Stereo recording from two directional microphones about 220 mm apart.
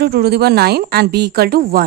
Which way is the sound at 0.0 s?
45° right (ahead or behind).